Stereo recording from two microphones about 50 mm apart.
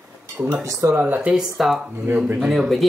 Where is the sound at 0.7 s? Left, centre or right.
Right.